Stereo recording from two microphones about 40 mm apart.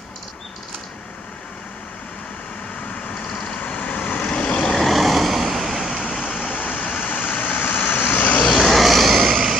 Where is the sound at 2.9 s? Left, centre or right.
Left.